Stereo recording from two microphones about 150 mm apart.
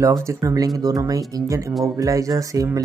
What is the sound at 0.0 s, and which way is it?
Speech, 20° right (ahead or behind).